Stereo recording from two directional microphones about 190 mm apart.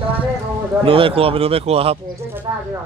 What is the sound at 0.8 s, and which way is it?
Speech, 30° right (ahead or behind).